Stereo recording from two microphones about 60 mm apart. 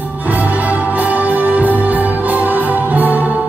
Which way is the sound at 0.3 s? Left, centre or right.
Right.